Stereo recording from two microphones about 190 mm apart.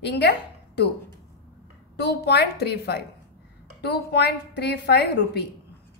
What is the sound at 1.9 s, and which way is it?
A woman's voice, 60° left (ahead or behind).